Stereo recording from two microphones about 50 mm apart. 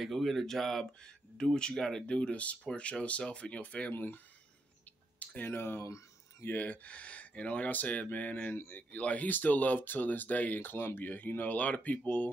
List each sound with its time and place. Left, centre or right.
0.0 s speech: centre
1.0 s speech: centre
3.9 s speech: left
5.4 s speech: left
6.5 s speech: left